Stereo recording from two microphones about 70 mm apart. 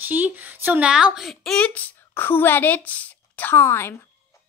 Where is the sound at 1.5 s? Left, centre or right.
Centre; by 4.0 s left.